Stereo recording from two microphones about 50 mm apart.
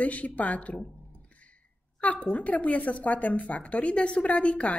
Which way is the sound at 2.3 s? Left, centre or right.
Left.